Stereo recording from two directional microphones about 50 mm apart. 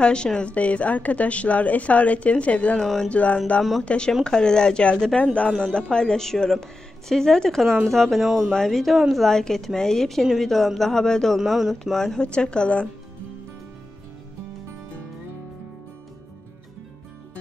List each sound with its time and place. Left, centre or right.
0.0 s a woman's voice: centre
2.8 s a woman's voice: centre
3.1 s a woman's voice: left; by 8.5 s centre
8.5 s a man's voice: centre
11.3 s a man's voice: centre
12.2 s a woman's voice: centre